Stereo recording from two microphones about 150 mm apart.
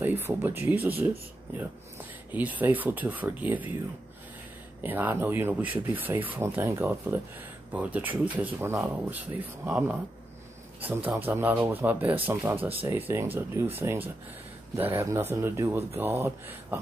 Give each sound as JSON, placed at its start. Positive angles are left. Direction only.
{"t": 0.0, "sound": "speech", "side_deg": -15}
{"t": 2.3, "sound": "speech", "side_deg": -10}
{"t": 4.8, "sound": "speech", "side_deg": -10}